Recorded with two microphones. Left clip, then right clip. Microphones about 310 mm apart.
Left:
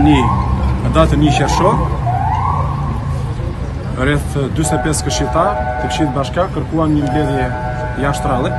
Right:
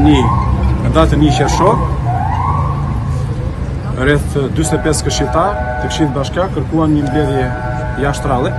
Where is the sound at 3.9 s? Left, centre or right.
Centre.